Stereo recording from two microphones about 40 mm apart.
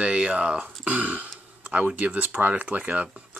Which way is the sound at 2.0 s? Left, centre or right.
Right.